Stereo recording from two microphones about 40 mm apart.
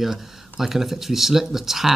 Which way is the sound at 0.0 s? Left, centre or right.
Centre.